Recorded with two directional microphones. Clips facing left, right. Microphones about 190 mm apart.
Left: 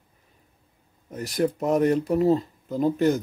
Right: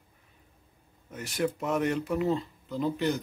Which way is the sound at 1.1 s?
40° left (ahead or behind).